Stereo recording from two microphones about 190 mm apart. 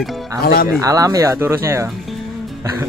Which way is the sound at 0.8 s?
15° right (ahead or behind).